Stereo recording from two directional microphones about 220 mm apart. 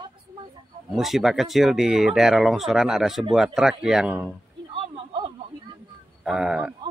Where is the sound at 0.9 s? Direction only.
Centre (ahead or behind).